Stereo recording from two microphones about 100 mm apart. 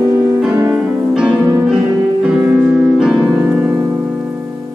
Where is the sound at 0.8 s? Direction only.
10° right (ahead or behind).